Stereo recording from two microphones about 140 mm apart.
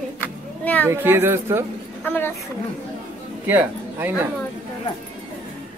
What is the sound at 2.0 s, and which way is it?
Speech, 15° left (ahead or behind).